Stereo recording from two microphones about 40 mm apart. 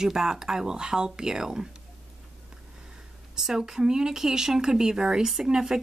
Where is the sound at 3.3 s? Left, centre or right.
Centre.